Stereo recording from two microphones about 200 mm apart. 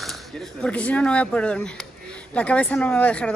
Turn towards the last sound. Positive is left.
turn(degrees=5)  # may be behind; listen again after turning